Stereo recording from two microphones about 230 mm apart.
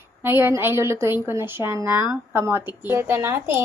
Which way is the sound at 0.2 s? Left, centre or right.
Centre.